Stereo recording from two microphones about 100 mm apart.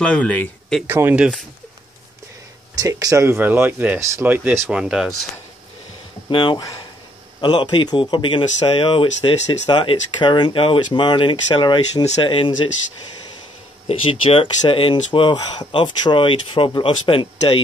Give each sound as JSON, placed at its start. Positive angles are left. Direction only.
{"t": 0.0, "sound": "speech", "side_deg": 10}
{"t": 0.8, "sound": "speech", "side_deg": -25}
{"t": 2.7, "sound": "speech", "side_deg": -35}
{"t": 3.3, "sound": "speech", "side_deg": -20}
{"t": 4.6, "sound": "speech", "side_deg": -10}
{"t": 6.3, "sound": "speech", "side_deg": 55}
{"t": 13.8, "sound": "speech", "side_deg": 65}